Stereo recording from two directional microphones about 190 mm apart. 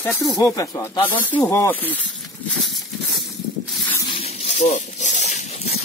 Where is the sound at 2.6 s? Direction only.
Centre (ahead or behind).